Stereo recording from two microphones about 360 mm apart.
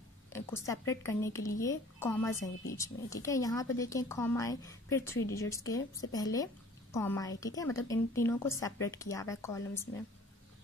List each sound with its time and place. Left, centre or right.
0.3 s a woman's voice: centre